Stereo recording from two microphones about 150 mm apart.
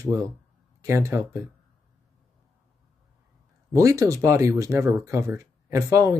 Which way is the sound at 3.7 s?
20° right (ahead or behind).